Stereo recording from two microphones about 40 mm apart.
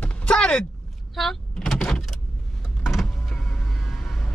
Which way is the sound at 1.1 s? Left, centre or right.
Centre.